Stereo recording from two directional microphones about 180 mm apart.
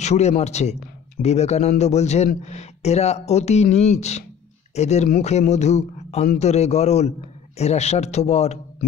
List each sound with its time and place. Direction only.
0.0 s a man's voice: 40° left (ahead or behind)